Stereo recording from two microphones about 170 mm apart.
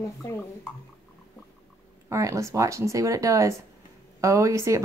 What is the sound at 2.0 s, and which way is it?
Speech, 20° right (ahead or behind).